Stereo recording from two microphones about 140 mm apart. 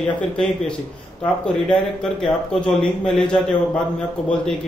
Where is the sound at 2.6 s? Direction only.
5° left (ahead or behind).